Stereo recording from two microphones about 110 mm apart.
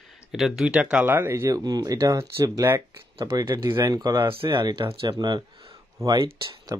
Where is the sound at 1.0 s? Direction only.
20° right (ahead or behind).